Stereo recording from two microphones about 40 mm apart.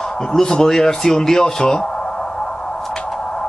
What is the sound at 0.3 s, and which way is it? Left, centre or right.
Speech, centre.